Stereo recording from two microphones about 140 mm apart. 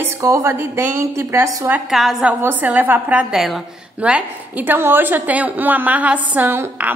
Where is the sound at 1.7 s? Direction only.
Centre (ahead or behind).